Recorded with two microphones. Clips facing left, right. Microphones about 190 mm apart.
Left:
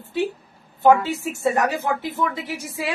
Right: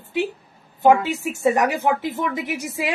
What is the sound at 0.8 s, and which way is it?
A man's voice, 15° right (ahead or behind).